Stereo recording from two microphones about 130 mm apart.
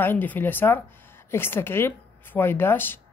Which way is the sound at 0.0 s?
15° left (ahead or behind).